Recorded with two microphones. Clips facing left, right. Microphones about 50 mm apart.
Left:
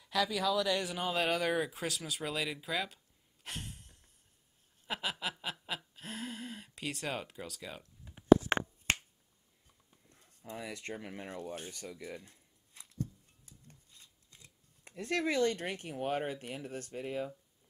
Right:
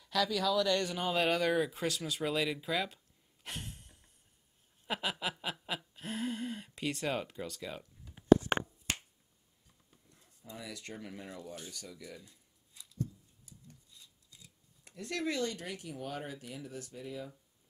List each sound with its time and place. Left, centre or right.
0.0 s a sound: centre
8.9 s finger snapping: left
10.4 s speech: left
11.2 s speech: left
12.0 s a sound: left
14.9 s speech: left